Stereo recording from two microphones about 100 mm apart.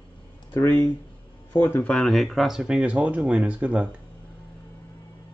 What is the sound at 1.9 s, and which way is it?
Speech, centre (ahead or behind).